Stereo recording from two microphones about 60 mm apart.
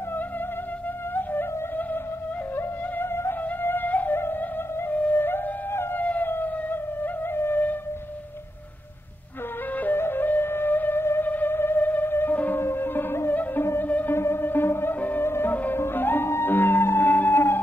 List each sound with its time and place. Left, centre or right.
1.1 s music: left
2.5 s music: left
4.8 s flute: left
5.9 s music: left
9.9 s music: left
14.1 s music: left
15.0 s music: left
15.2 s music: left
15.5 s music: left